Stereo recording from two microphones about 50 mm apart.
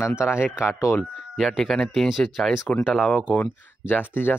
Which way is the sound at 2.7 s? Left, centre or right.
Left.